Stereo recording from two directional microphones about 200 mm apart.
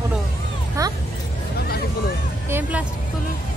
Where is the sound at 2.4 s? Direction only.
10° right (ahead or behind).